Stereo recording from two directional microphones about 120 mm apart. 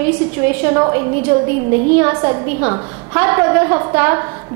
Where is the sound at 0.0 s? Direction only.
20° right (ahead or behind).